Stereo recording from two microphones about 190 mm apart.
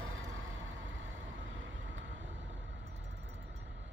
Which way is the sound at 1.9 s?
75° right (ahead or behind).